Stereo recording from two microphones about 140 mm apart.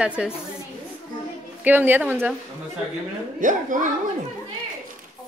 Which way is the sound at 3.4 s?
70° right (ahead or behind).